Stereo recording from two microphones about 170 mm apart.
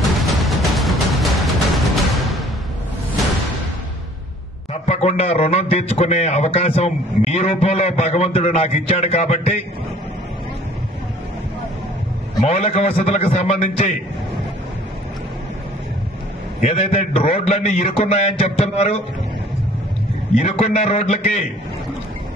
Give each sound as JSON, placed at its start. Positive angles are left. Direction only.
{"t": 0.0, "sound": "music", "side_deg": 0}
{"t": 4.8, "sound": "a man's voice", "side_deg": 40}
{"t": 12.4, "sound": "a man's voice", "side_deg": 35}
{"t": 16.6, "sound": "a man's voice", "side_deg": 35}
{"t": 20.3, "sound": "a man's voice", "side_deg": 35}